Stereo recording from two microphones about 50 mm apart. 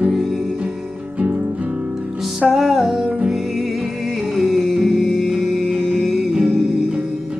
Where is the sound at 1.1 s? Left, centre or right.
Right.